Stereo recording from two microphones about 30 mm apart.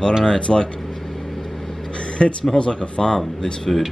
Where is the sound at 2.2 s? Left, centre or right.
Left.